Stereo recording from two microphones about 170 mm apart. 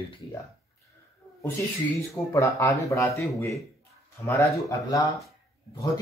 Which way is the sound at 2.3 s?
20° left (ahead or behind).